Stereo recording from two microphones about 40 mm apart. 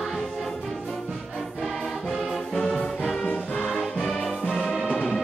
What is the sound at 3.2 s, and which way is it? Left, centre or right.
Music, left.